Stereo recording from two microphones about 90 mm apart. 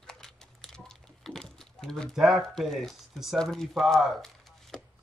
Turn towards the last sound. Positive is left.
turn(degrees=0)  # may be behind; listen again after turning